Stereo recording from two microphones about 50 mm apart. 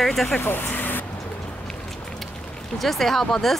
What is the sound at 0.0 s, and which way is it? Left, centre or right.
Speech, centre.